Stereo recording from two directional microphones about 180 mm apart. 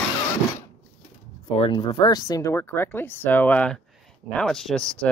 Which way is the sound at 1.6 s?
25° left (ahead or behind).